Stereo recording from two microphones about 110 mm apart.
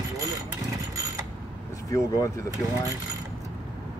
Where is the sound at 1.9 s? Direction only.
30° left (ahead or behind).